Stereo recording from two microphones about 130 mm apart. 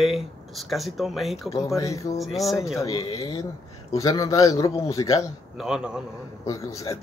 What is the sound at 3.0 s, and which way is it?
Speech, 45° left (ahead or behind).